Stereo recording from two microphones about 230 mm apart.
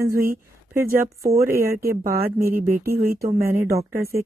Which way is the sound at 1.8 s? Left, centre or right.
Right.